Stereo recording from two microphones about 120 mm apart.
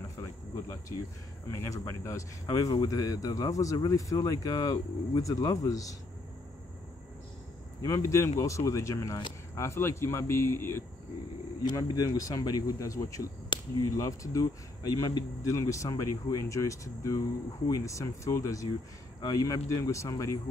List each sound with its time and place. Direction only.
0.2 s cricket: 25° left (ahead or behind)
1.5 s speech: 25° left (ahead or behind)
7.8 s speech: 25° left (ahead or behind)